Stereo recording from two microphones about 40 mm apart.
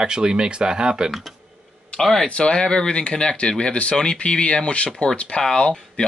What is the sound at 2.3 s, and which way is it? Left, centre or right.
Speech, left.